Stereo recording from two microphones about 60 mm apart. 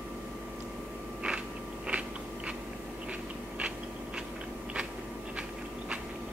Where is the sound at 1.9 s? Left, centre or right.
Centre.